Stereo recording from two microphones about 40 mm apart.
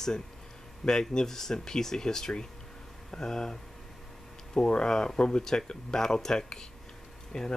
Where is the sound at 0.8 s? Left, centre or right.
Centre.